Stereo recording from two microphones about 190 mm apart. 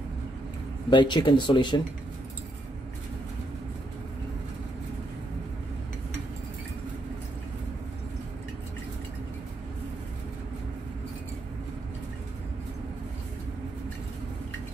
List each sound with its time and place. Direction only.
0.8 s speech: 25° left (ahead or behind)